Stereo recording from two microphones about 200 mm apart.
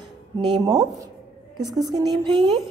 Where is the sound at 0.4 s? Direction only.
20° right (ahead or behind).